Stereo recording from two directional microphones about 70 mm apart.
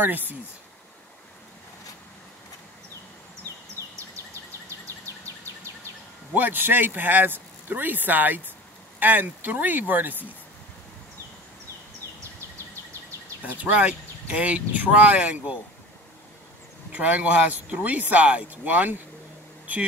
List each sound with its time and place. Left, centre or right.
0.0 s speech: right
4.6 s a sound: right
6.3 s speech: right
13.6 s speech: right
16.9 s speech: right